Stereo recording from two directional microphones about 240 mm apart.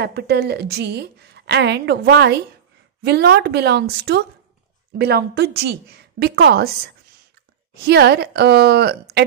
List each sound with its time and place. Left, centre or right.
0.0 s a woman's voice: right
7.8 s a woman's voice: right